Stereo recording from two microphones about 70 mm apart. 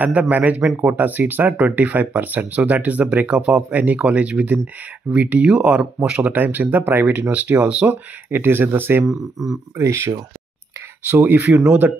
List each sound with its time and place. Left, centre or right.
0.0 s speech: right
7.8 s speech: right
9.0 s speech: centre
9.8 s speech: right
11.1 s speech: right